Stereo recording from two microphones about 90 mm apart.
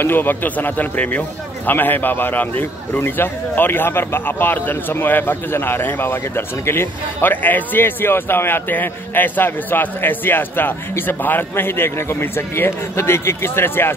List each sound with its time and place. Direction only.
0.0 s a man's voice: 25° left (ahead or behind)